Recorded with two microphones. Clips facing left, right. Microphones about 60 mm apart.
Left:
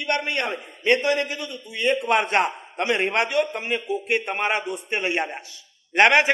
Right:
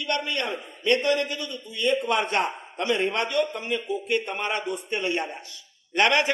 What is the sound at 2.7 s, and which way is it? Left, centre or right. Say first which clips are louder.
Speech: left 2 dB; left.